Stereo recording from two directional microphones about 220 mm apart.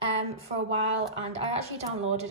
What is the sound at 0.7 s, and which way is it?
Speech, 25° right (ahead or behind).